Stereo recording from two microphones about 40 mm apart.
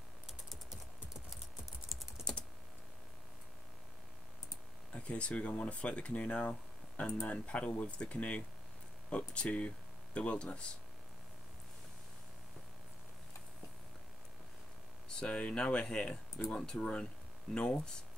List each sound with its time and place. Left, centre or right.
1.9 s typing: centre
2.3 s typing: left
4.9 s speech: left
15.0 s speech: left